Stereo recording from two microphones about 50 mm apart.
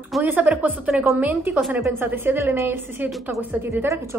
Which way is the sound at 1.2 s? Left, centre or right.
Right.